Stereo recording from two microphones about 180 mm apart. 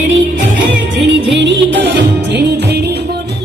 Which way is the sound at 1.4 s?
80° right.